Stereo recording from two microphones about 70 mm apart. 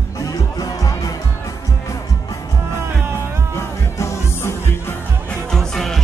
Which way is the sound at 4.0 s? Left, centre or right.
Left.